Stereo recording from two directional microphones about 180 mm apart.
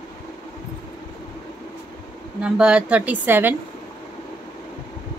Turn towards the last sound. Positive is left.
turn(degrees=-10)  # may be behind; listen again after turning